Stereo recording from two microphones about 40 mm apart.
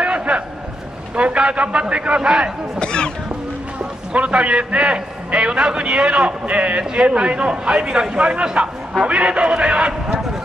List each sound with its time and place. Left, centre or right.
0.0 s a sound: right
1.1 s a man's voice: right
2.8 s speech: left
4.1 s a man's voice: right